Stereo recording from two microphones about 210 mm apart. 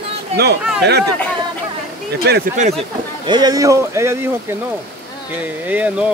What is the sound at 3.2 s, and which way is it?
Speech, 20° right (ahead or behind).